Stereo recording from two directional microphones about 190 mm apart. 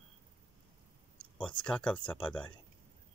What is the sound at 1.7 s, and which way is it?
Speech, 5° left (ahead or behind).